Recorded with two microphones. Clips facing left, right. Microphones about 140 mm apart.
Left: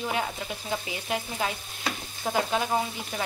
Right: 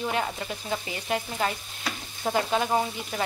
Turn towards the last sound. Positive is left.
turn(degrees=0)  # may be behind; listen again after turning